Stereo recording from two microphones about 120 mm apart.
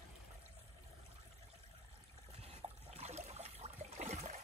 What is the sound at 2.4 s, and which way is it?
Water, 60° right (ahead or behind).